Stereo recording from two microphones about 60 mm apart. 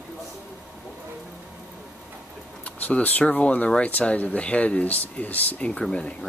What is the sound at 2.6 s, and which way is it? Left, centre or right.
Speech, left.